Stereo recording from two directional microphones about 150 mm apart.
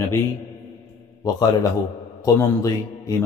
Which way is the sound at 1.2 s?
25° left (ahead or behind).